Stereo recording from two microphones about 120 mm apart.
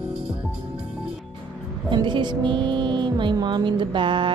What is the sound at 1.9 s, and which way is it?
Music, 40° right (ahead or behind).